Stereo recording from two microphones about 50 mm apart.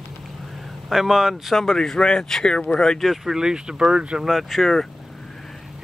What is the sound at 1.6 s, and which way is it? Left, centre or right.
Speech, centre.